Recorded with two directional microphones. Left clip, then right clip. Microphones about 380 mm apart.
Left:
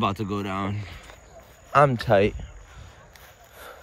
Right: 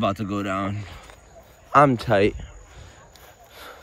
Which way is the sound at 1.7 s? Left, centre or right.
Centre.